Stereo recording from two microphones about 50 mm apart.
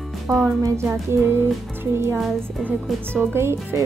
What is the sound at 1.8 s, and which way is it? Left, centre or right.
Speech, right.